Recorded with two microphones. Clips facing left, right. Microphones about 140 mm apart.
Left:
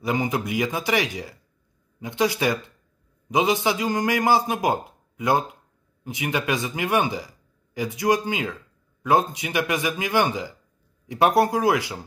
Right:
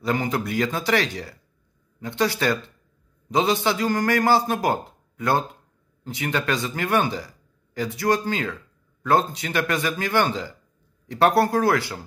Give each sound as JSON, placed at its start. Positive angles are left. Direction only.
{"t": 0.0, "sound": "a man's voice", "side_deg": 15}